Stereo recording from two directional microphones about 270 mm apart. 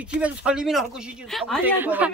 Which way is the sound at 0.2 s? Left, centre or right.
Centre.